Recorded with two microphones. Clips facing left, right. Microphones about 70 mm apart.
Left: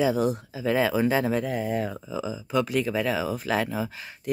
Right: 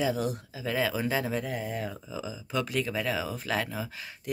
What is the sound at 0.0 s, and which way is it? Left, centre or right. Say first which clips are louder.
Speech: left 6 dB; left.